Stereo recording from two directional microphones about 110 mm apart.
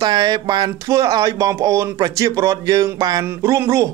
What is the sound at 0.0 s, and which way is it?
A woman's voice, 40° right (ahead or behind).